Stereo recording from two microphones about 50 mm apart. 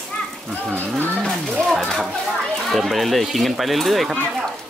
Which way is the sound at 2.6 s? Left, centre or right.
Centre.